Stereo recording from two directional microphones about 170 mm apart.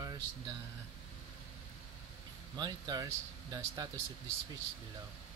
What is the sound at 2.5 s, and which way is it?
Speech, 25° right (ahead or behind).